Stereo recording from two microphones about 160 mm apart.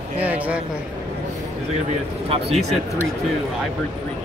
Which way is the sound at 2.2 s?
40° right (ahead or behind).